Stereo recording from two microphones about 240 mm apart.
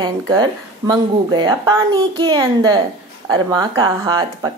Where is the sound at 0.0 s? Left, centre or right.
Centre.